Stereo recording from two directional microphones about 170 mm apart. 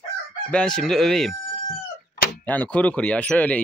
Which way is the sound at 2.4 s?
10° left (ahead or behind).